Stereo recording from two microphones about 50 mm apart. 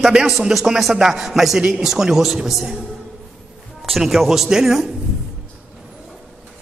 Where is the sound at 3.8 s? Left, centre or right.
Centre.